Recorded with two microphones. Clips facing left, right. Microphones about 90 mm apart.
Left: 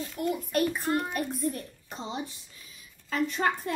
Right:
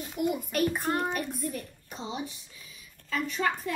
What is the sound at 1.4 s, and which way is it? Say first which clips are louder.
Speech: left 3 dB; 40° left (ahead or behind).